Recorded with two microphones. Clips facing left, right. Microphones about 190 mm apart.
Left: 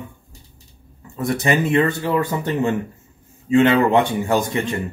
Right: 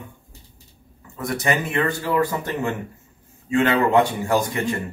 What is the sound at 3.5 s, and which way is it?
Speech, 25° left (ahead or behind).